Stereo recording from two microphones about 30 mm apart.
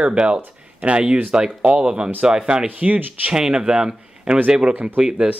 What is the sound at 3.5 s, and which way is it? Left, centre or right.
Speech, right.